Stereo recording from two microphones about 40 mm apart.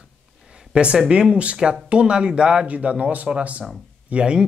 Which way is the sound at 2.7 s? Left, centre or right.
Right.